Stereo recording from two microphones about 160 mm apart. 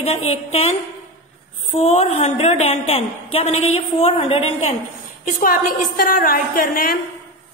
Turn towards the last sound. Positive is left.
turn(degrees=65)  # may be behind; listen again after turning